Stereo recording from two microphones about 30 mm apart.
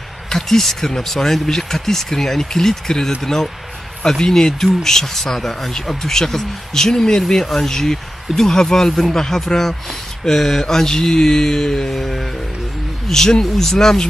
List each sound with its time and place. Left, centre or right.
0.4 s speech: centre
11.9 s speech: centre